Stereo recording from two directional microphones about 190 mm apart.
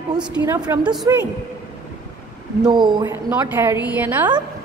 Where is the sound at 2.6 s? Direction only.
20° right (ahead or behind).